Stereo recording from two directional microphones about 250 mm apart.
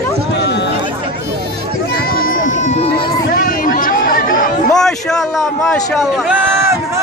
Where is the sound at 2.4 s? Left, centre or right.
Left.